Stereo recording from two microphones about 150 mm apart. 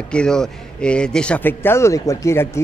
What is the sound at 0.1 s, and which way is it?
A man's voice, 5° left (ahead or behind).